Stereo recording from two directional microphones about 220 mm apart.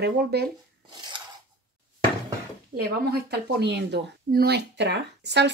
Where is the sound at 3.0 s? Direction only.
45° right (ahead or behind).